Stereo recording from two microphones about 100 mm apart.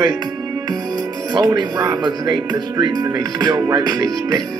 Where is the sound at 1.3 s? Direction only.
45° right (ahead or behind).